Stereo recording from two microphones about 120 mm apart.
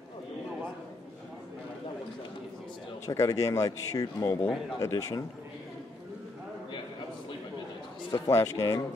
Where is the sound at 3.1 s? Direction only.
25° left (ahead or behind).